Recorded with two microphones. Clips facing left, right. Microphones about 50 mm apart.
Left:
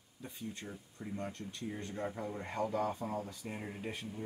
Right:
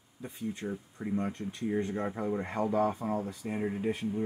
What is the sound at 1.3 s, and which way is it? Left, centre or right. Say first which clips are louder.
Speech: right 9 dB; centre.